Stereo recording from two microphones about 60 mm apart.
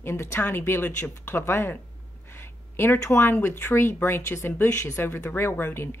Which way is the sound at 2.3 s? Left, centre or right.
Left.